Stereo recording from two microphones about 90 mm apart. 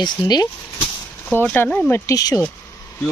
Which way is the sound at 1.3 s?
20° left (ahead or behind).